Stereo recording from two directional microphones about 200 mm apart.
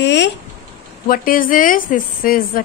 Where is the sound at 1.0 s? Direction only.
45° left (ahead or behind).